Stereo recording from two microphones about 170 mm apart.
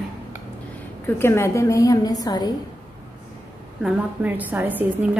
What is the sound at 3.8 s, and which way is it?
A woman's voice, 5° right (ahead or behind).